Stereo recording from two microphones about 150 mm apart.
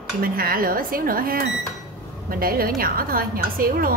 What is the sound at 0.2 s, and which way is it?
Speech, 75° right (ahead or behind).